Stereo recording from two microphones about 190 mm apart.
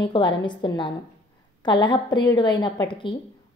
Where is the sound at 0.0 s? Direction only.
25° left (ahead or behind).